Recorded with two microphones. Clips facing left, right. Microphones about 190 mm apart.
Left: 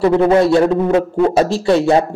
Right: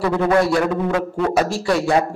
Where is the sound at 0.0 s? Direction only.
25° left (ahead or behind).